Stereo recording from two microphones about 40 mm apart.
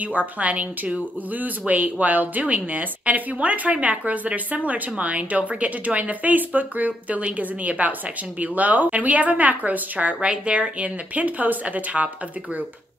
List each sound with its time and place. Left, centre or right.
0.4 s speech: right
10.2 s speech: right